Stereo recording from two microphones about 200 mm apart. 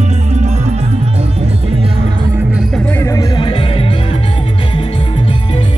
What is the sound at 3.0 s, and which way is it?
Music, 20° left (ahead or behind).